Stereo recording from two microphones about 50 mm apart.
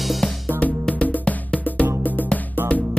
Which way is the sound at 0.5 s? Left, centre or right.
Right.